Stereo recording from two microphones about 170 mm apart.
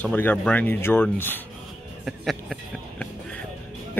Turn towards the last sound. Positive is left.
turn(degrees=5)  # may be behind; listen again after turning